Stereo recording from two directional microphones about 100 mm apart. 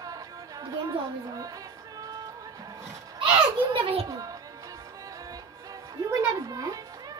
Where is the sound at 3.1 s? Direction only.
60° right (ahead or behind).